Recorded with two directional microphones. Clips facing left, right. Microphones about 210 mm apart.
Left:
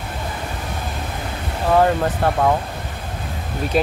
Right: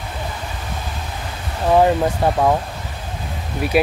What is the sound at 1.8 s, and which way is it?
Speech, 10° right (ahead or behind).